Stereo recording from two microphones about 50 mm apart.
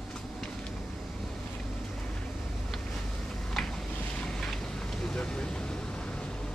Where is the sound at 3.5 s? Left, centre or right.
Centre.